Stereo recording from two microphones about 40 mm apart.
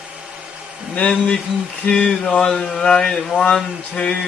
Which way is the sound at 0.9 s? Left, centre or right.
Left.